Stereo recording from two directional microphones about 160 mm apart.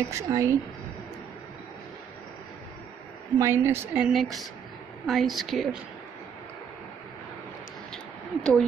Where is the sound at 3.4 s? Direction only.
15° right (ahead or behind).